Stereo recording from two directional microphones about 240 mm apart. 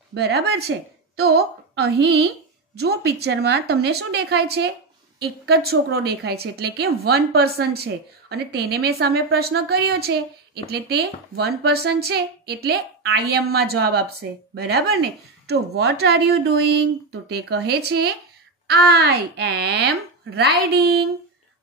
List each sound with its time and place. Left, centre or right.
0.1 s a woman's voice: right